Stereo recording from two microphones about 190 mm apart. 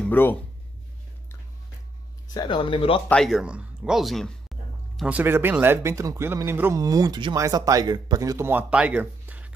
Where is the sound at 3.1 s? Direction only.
Centre (ahead or behind).